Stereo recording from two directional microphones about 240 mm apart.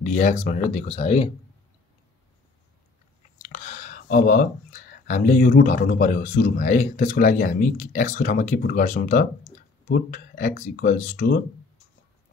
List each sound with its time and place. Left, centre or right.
0.0 s speech: left
3.4 s speech: left